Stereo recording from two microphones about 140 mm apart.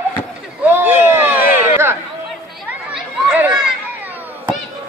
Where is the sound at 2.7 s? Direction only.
10° right (ahead or behind).